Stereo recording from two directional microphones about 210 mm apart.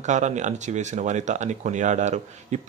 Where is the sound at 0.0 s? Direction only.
35° right (ahead or behind).